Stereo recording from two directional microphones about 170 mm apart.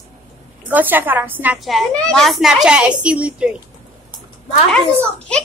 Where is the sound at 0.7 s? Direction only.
10° right (ahead or behind).